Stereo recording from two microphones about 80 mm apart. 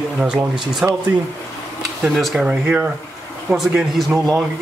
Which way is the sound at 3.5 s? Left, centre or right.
Right.